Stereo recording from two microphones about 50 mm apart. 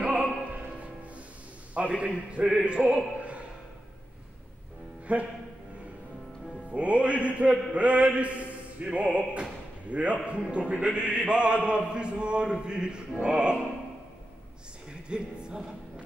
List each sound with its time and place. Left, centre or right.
0.0 s music: right
2.0 s speech: right
5.0 s speech: right
6.7 s speech: right
14.9 s speech: centre